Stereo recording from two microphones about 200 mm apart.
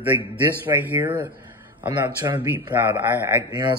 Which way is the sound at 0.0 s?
10° right (ahead or behind).